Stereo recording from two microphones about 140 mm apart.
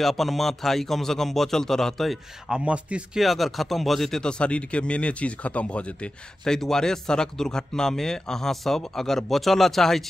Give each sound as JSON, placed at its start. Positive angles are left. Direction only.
{"t": 0.0, "sound": "a man's voice", "side_deg": 0}